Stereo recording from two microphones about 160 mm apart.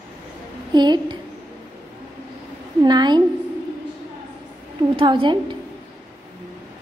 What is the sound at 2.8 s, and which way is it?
Speech, 25° right (ahead or behind).